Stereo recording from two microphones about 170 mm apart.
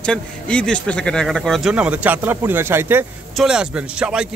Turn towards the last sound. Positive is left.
turn(degrees=-5)  # may be behind; listen again after turning